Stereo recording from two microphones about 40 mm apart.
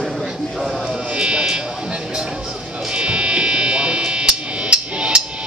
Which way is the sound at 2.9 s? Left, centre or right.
Right.